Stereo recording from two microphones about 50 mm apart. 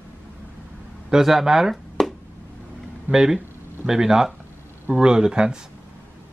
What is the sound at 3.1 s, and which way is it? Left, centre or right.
Speech, centre.